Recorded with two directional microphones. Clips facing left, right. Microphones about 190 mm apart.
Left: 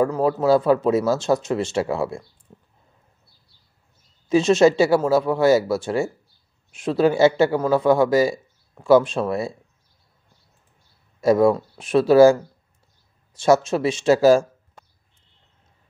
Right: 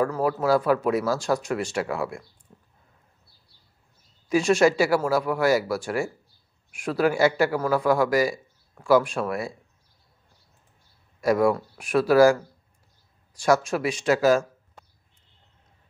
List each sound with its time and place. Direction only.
0.0 s a man's voice: 20° left (ahead or behind)
2.5 s a sound: 25° left (ahead or behind)
4.3 s a man's voice: 20° left (ahead or behind)
11.1 s a man's voice: 25° left (ahead or behind)